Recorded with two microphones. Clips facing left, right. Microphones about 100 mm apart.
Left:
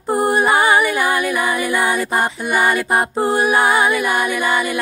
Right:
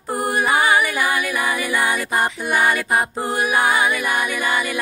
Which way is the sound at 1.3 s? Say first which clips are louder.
Left 3 dB; 20° left (ahead or behind).